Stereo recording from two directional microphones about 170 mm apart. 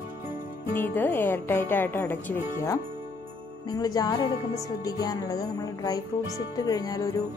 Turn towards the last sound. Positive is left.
turn(degrees=20)  # may be behind; listen again after turning